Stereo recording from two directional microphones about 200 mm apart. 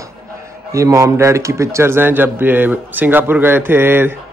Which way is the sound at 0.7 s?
15° right (ahead or behind).